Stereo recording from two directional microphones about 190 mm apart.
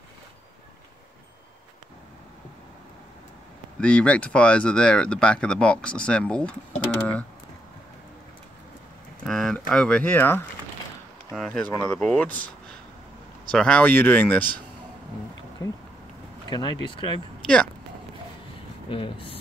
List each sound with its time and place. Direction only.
3.8 s speech: 5° left (ahead or behind)
9.2 s a sound: centre (ahead or behind)
11.3 s speech: 5° left (ahead or behind)
13.5 s speech: 5° left (ahead or behind)
16.4 s speech: 20° left (ahead or behind)
18.9 s speech: 25° left (ahead or behind)